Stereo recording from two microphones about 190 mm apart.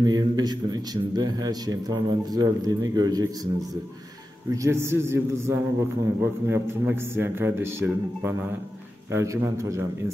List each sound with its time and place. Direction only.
0.0 s a man's voice: 20° right (ahead or behind)
4.5 s a man's voice: 15° right (ahead or behind)